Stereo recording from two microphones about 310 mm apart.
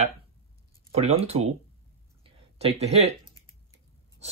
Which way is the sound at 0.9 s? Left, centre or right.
Centre.